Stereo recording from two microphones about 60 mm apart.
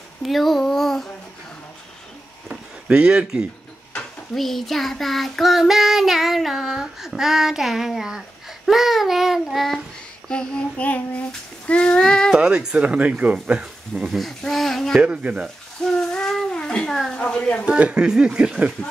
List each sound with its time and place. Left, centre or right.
0.2 s child singing: centre
2.4 s a sound: centre
4.4 s child singing: centre
10.3 s child singing: centre
12.4 s speech: centre
13.9 s child singing: centre
15.0 s speech: centre
15.8 s a sound: centre
17.1 s child singing: centre
17.6 s speech: centre